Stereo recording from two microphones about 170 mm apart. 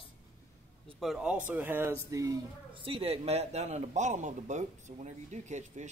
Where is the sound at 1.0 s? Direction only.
Centre (ahead or behind).